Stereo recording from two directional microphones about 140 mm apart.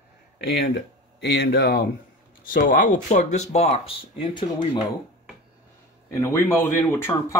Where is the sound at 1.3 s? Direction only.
90° left.